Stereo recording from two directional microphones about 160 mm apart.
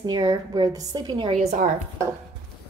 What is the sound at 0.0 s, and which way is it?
A woman's voice, 25° right (ahead or behind).